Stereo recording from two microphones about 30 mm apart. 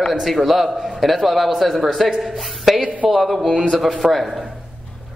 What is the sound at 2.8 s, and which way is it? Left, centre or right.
Speech, right.